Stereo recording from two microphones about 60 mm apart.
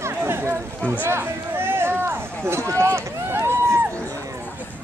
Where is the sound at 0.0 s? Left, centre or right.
Right.